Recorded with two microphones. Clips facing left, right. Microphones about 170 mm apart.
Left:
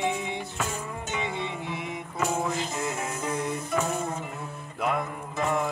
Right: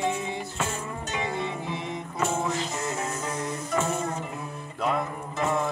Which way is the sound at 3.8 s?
Centre (ahead or behind).